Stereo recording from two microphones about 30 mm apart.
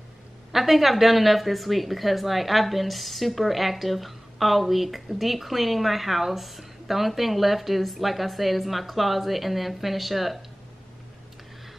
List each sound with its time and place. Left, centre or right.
0.5 s a woman's voice: centre